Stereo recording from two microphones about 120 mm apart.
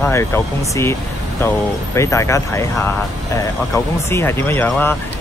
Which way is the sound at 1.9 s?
25° left (ahead or behind).